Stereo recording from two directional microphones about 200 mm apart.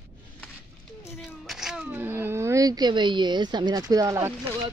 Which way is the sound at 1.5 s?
Centre (ahead or behind).